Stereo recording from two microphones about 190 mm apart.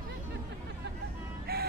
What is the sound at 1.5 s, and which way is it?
Music, 55° right (ahead or behind).